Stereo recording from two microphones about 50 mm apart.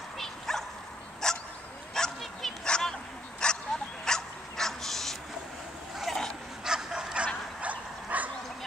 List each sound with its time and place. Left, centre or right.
0.2 s bow-wow: centre
1.2 s dog: centre
5.9 s vehicle: centre
6.6 s bow-wow: centre
7.6 s dog: right